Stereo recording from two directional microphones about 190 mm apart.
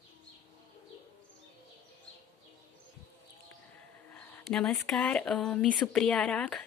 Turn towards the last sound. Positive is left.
turn(degrees=5)  # may be behind; listen again after turning